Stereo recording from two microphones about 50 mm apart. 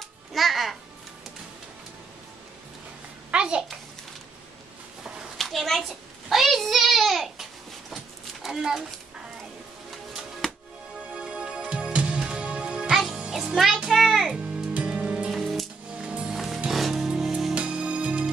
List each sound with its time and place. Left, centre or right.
0.3 s music: centre
3.3 s a sound: right
5.4 s a sound: centre
10.4 s music: centre
11.1 s music: centre
12.9 s music: centre
13.2 s music: centre
13.8 s music: centre
14.3 s music: right
15.3 s music: centre
16.0 s music: centre
16.3 s music: centre
17.6 s music: right